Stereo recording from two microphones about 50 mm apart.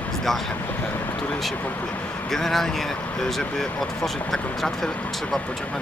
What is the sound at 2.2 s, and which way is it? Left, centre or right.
Speech, centre.